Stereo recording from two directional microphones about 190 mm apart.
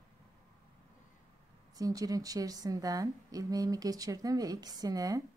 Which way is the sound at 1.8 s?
20° right (ahead or behind).